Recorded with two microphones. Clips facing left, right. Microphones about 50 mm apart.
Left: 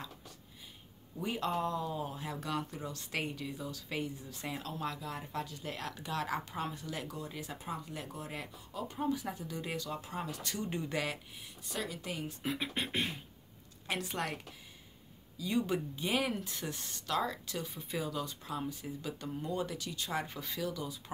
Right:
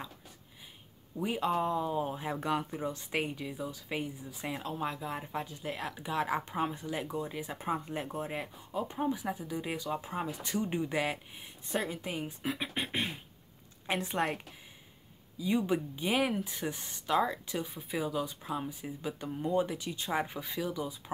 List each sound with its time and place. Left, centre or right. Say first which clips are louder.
1.1 s speech: right 4 dB; centre
7.5 s speech: right 9 dB; right
12.4 s speech: even; centre